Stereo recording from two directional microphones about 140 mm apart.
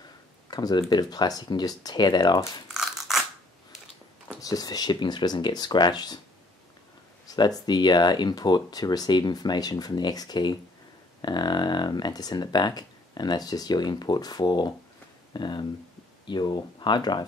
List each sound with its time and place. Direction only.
0.5 s speech: 30° left (ahead or behind)
2.7 s scissors: centre (ahead or behind)
4.4 s speech: 25° left (ahead or behind)
7.2 s speech: 30° left (ahead or behind)